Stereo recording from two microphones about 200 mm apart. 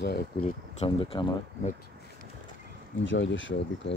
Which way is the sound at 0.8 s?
25° left (ahead or behind).